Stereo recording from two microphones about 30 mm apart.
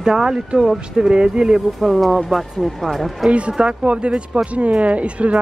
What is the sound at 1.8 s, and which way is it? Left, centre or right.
Speech, centre.